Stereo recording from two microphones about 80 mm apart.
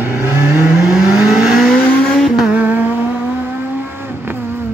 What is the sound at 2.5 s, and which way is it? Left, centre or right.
Vehicle, centre.